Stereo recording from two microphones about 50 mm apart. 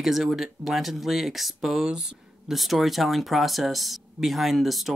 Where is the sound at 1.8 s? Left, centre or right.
Centre.